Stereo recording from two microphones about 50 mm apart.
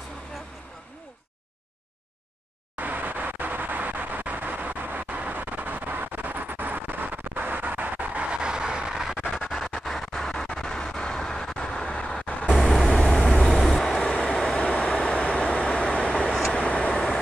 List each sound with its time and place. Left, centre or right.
2.8 s vehicle: right; by 9.2 s centre
9.4 s a sound: centre
9.8 s vehicle: centre
12.3 s vehicle: left
12.6 s vehicle: centre
12.9 s vehicle: centre
16.3 s vehicle: centre
16.5 s vehicle: left